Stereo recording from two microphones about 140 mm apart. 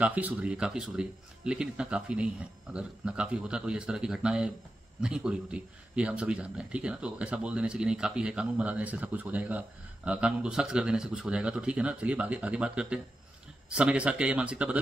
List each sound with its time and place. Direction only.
0.0 s a man's voice: 10° right (ahead or behind)